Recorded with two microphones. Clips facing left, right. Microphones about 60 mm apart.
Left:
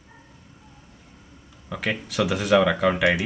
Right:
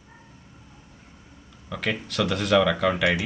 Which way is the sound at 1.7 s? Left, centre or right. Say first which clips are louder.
Left 1 dB; centre.